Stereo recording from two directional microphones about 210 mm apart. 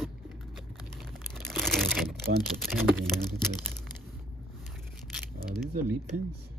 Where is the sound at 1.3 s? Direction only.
Centre (ahead or behind).